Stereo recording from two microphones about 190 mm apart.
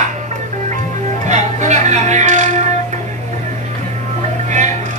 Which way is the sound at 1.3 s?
40° right (ahead or behind).